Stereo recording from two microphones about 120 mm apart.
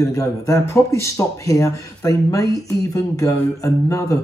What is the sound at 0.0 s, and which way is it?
Speech, 25° left (ahead or behind).